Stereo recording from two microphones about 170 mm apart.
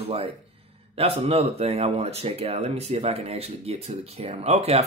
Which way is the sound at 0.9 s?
35° right (ahead or behind).